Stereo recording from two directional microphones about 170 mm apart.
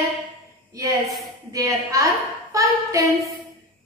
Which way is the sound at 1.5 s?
20° right (ahead or behind).